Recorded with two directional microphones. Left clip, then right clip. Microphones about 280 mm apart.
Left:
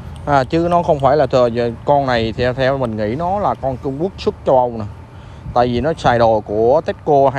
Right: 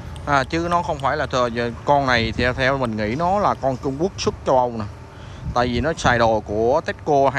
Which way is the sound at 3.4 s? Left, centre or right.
Right.